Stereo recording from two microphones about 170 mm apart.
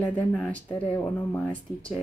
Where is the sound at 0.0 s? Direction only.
10° left (ahead or behind).